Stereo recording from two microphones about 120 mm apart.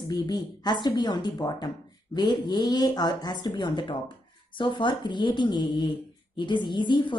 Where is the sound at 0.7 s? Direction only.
35° left (ahead or behind).